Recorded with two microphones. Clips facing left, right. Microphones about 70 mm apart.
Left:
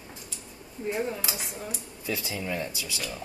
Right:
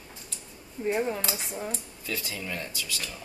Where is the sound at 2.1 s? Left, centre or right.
Centre.